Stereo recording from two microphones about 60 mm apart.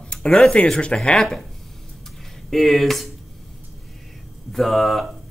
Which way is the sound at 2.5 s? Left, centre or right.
Centre.